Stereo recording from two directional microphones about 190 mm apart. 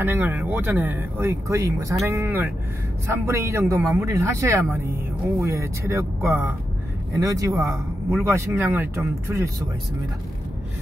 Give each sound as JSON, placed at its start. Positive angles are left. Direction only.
{"t": 0.0, "sound": "speech", "side_deg": -10}